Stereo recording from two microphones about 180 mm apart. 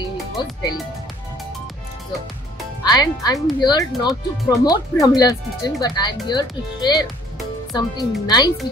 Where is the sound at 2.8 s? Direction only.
20° left (ahead or behind).